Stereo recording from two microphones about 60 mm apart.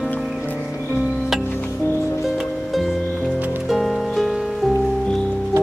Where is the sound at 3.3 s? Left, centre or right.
Right.